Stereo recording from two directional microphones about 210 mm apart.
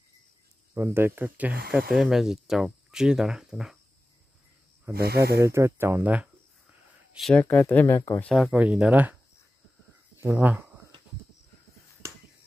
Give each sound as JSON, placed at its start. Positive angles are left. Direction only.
{"t": 0.7, "sound": "speech", "side_deg": -10}
{"t": 4.9, "sound": "speech", "side_deg": -50}
{"t": 5.4, "sound": "speech", "side_deg": -15}
{"t": 8.3, "sound": "speech", "side_deg": 0}
{"t": 10.2, "sound": "speech", "side_deg": -10}
{"t": 12.0, "sound": "a sound", "side_deg": -15}